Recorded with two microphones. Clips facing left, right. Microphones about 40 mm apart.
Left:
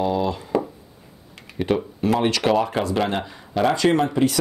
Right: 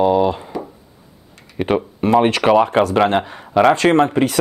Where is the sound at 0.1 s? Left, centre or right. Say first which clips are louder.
Right 7 dB; right.